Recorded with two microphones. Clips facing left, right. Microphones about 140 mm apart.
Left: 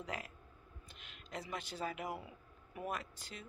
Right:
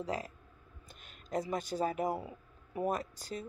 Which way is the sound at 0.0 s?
35° right (ahead or behind).